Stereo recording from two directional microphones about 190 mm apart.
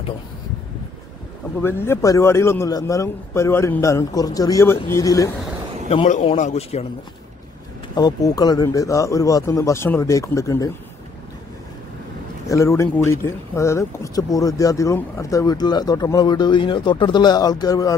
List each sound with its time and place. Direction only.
1.6 s a man's voice: 10° left (ahead or behind)
5.9 s speech: 35° left (ahead or behind)
7.9 s a man's voice: 20° left (ahead or behind)
12.4 s speech: 15° left (ahead or behind)